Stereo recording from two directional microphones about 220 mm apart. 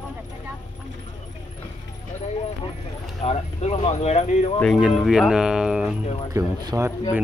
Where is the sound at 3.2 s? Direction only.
30° left (ahead or behind).